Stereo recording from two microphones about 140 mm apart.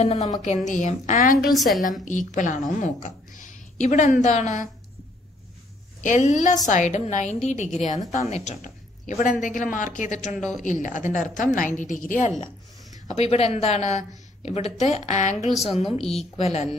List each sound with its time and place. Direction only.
0.4 s a woman's voice: 65° left (ahead or behind)
1.5 s a woman's voice: centre (ahead or behind)
1.8 s a woman's voice: 70° left (ahead or behind)
6.0 s a woman's voice: 65° left (ahead or behind)
13.1 s speech: 50° left (ahead or behind)
15.7 s speech: 45° left (ahead or behind)